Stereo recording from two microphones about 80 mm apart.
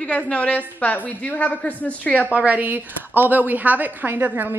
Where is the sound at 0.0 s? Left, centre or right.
Centre.